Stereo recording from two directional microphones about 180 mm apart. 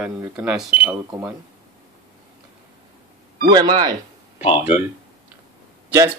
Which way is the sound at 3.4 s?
20° right (ahead or behind).